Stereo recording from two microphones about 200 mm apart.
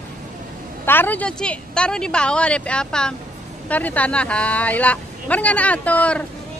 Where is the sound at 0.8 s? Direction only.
10° left (ahead or behind).